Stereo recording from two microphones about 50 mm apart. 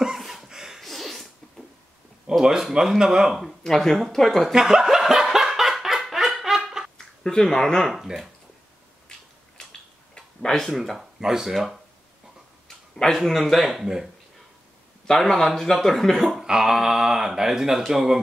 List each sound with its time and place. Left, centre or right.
0.2 s a sound: centre
0.7 s sneeze: centre
2.2 s speech: centre
3.3 s speech: centre
4.5 s snicker: centre
7.2 s speech: centre
7.9 s speech: centre
9.6 s tick-tock: centre
10.6 s speech: centre
12.6 s speech: centre
15.0 s speech: centre
16.3 s speech: centre